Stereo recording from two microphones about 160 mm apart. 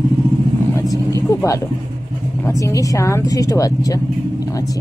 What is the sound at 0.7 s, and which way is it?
Vehicle, 20° left (ahead or behind).